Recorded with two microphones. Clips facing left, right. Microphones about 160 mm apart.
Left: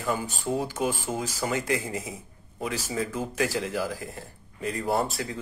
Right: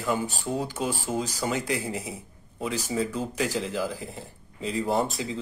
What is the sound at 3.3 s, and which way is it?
Speech, 20° right (ahead or behind).